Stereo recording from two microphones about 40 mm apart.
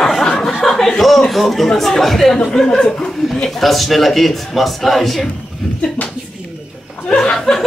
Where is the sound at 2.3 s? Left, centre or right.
Centre.